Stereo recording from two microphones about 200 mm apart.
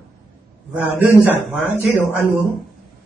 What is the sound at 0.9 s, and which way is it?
Speech, 10° right (ahead or behind).